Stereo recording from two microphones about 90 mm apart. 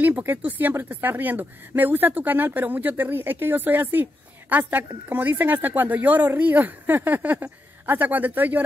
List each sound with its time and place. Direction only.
0.0 s speech: 20° right (ahead or behind)